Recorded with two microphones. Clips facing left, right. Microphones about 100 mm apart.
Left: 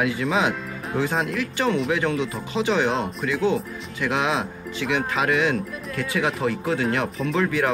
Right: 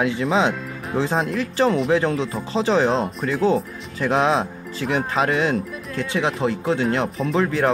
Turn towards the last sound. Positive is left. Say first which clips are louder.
# right 3 dB
turn(degrees=-30)  # may be behind; listen again after turning